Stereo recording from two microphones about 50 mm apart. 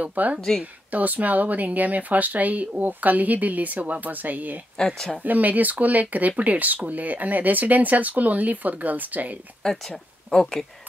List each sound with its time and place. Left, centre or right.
0.0 s speech: right
0.4 s speech: centre
0.9 s speech: right
4.7 s speech: centre
5.2 s speech: right
9.6 s speech: centre